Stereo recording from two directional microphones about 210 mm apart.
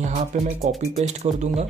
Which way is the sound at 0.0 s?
35° right (ahead or behind).